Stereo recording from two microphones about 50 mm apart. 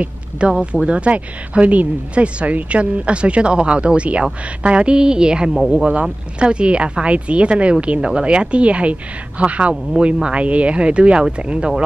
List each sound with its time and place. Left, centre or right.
0.5 s speech: centre